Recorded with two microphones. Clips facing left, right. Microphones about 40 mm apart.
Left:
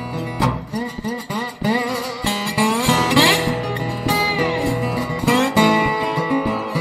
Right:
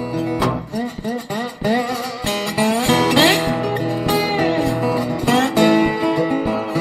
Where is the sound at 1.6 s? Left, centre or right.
Centre.